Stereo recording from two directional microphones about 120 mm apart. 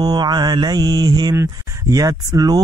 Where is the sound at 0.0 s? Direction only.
35° right (ahead or behind).